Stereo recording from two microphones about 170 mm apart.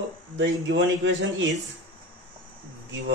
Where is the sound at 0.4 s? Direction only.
90° right.